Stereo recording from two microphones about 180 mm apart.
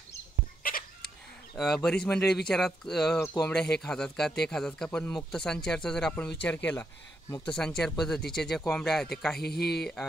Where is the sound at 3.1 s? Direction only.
15° left (ahead or behind).